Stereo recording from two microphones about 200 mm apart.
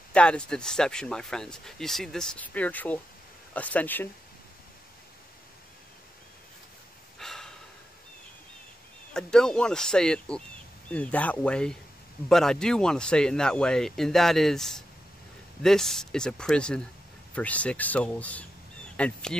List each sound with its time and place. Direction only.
0.1 s speech: 5° left (ahead or behind)
7.2 s breathing: centre (ahead or behind)
9.1 s speech: 5° left (ahead or behind)